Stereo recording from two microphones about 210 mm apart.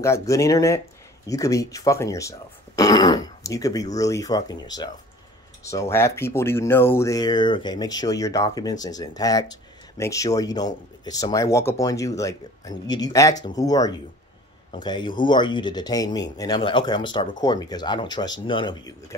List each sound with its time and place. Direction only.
0.0 s speech: 15° left (ahead or behind)